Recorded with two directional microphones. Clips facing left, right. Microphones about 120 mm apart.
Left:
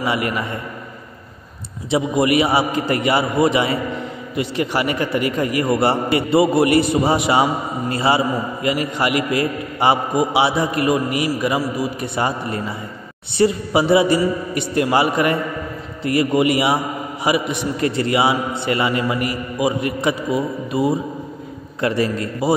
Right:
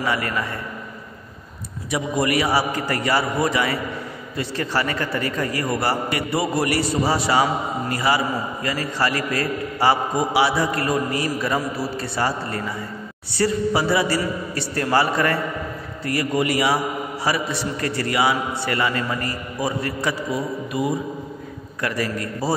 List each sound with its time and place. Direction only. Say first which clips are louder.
0.0 s a man's voice: left 3 dB; 20° left (ahead or behind)
1.9 s a man's voice: left 5 dB; 25° left (ahead or behind)